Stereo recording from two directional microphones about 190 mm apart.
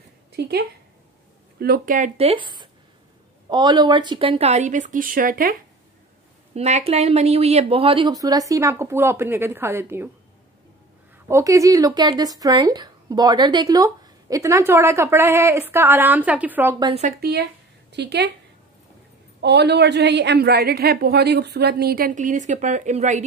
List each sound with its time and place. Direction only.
0.3 s a woman's voice: 60° right (ahead or behind)
1.6 s speech: 50° right (ahead or behind)
6.5 s a woman's voice: 35° right (ahead or behind); by 10.0 s 10° right (ahead or behind)
11.2 s speech: 15° right (ahead or behind)
17.2 s a woman's voice: 55° right (ahead or behind)
19.4 s a woman's voice: 60° right (ahead or behind); by 23.2 s 40° right (ahead or behind)